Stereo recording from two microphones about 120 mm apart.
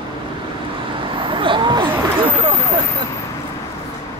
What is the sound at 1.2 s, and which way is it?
Vehicle, 45° right (ahead or behind).